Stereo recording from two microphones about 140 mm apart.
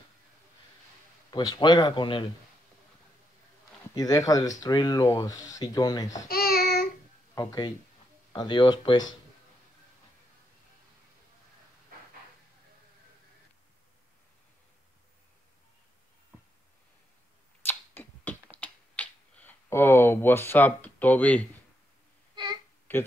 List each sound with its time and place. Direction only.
1.3 s speech: 30° left (ahead or behind)
3.9 s speech: 25° left (ahead or behind)
6.1 s babbling: 90° left
7.3 s speech: 25° left (ahead or behind)
17.6 s finger snapping: 15° left (ahead or behind)
22.3 s a sound: 30° right (ahead or behind)
22.9 s speech: 15° left (ahead or behind)